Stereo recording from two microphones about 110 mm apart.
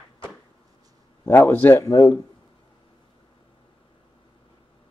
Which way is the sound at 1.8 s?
35° left (ahead or behind).